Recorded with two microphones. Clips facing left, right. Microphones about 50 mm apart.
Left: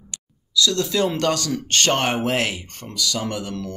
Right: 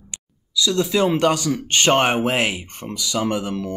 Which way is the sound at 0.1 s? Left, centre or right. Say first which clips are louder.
Left 2 dB; centre.